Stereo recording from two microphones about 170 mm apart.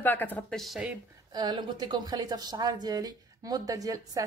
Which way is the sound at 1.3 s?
25° right (ahead or behind).